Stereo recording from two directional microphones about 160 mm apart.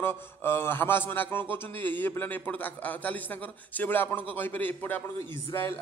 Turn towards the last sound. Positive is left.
turn(degrees=15)  # may be behind; listen again after turning